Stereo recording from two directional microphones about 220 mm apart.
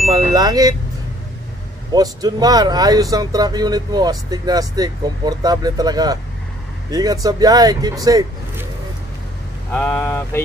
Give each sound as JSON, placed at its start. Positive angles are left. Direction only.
{"t": 0.1, "sound": "vehicle", "side_deg": -15}
{"t": 1.9, "sound": "speech", "side_deg": -20}
{"t": 9.7, "sound": "speech", "side_deg": 5}